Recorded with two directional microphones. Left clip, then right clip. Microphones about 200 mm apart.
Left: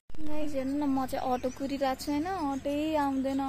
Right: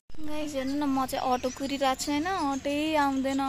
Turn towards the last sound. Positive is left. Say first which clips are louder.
# right 3 dB
turn(degrees=-10)  # may be behind; listen again after turning